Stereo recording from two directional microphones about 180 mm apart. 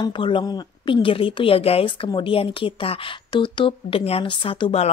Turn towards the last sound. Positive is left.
turn(degrees=30)  # may be behind; listen again after turning